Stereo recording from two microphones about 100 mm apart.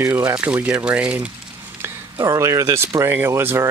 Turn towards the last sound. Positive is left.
turn(degrees=-25)  # may be behind; listen again after turning